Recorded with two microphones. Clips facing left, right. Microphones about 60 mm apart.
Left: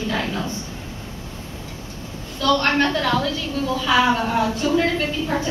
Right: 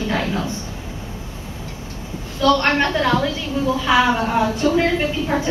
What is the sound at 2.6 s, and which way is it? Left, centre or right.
A woman's voice, centre.